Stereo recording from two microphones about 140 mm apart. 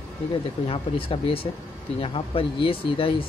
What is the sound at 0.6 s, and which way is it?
Speech, 40° left (ahead or behind).